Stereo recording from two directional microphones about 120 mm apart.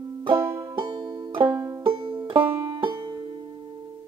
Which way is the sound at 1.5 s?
25° right (ahead or behind).